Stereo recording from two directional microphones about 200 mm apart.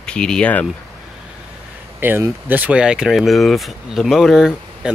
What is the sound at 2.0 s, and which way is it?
Speech, 10° right (ahead or behind).